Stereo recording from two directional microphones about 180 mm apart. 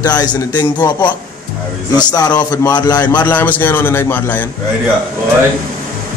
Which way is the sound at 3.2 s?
10° left (ahead or behind).